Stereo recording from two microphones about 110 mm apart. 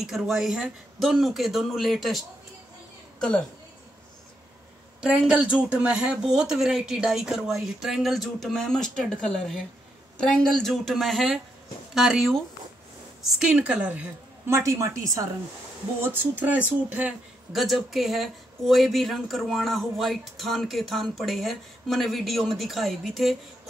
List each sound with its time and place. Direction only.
0.0 s speech: 5° right (ahead or behind)
5.0 s speech: 10° right (ahead or behind)
14.5 s a woman's voice: 25° right (ahead or behind)
17.5 s speech: centre (ahead or behind)